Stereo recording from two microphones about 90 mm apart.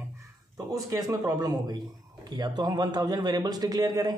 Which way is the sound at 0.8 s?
40° right (ahead or behind).